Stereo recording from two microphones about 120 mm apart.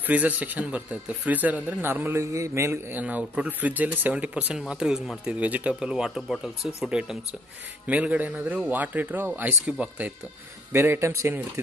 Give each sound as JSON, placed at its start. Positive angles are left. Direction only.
{"t": 0.0, "sound": "speech", "side_deg": -15}